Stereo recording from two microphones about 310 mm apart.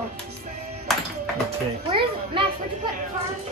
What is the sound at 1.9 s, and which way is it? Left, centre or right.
Speech, centre.